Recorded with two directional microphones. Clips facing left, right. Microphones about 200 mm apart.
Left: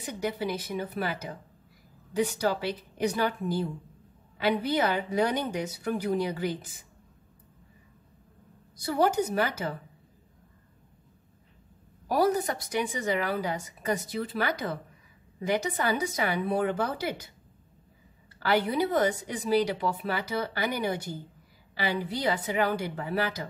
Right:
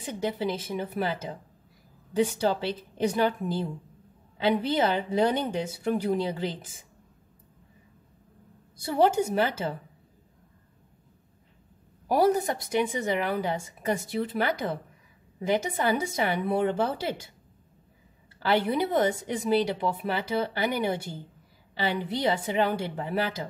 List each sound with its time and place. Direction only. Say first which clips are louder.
0.0 s speech: right 2 dB; 25° right (ahead or behind)
8.7 s speech: right 2 dB; 25° right (ahead or behind)
12.1 s speech: right 2 dB; 25° right (ahead or behind)
18.4 s speech: right 1 dB; 25° right (ahead or behind)